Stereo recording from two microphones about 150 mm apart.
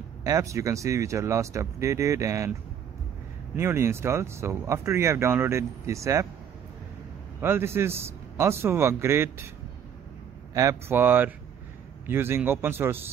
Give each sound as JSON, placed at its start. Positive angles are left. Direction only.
{"t": 0.2, "sound": "speech", "side_deg": -20}
{"t": 3.5, "sound": "speech", "side_deg": -15}
{"t": 7.3, "sound": "speech", "side_deg": -15}
{"t": 10.5, "sound": "speech", "side_deg": -20}